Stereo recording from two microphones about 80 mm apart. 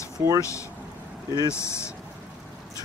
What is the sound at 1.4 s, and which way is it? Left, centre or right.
Speech, left.